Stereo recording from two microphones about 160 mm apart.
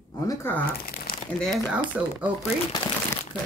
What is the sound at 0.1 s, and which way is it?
Speech, 20° left (ahead or behind).